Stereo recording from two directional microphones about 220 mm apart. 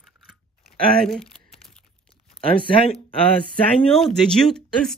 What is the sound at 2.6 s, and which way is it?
Speech, 25° left (ahead or behind).